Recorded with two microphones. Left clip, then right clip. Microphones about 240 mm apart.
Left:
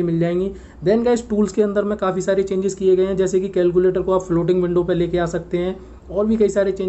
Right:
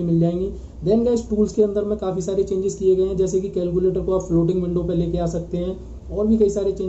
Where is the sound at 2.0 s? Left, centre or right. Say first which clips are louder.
Left 4 dB; left.